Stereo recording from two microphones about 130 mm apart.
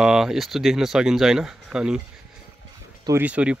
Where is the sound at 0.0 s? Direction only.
5° right (ahead or behind).